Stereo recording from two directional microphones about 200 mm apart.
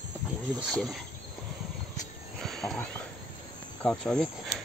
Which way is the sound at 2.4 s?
5° left (ahead or behind).